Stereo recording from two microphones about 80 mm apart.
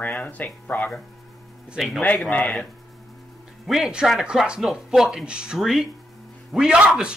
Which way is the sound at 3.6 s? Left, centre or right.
Centre.